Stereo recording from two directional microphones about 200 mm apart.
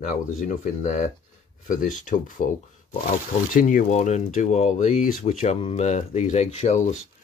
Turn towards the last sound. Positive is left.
turn(degrees=35)  # may be behind; listen again after turning